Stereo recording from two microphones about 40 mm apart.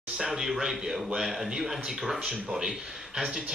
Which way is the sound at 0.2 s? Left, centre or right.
Centre.